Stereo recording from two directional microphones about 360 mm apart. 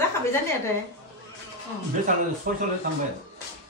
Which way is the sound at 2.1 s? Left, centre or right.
Right.